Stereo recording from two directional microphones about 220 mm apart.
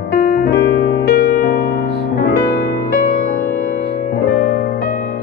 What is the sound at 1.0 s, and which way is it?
Music, 45° left (ahead or behind).